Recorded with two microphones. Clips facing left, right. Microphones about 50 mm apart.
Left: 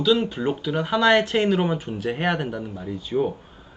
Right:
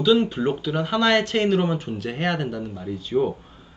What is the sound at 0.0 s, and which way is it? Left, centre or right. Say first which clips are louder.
A man's voice: right 2 dB; centre.